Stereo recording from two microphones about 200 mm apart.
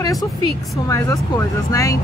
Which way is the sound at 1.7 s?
15° left (ahead or behind).